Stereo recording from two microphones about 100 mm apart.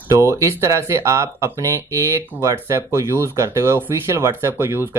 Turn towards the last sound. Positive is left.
turn(degrees=-20)  # may be behind; listen again after turning